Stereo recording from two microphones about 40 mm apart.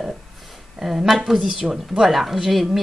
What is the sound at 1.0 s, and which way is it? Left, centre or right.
Speech, centre.